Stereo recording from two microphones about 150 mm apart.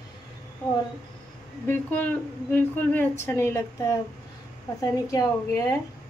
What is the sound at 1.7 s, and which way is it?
A woman's voice, 10° left (ahead or behind).